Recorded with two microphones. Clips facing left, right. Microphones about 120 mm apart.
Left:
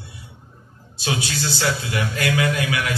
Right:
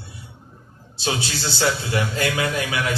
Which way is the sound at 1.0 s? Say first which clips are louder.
Even; 25° right (ahead or behind).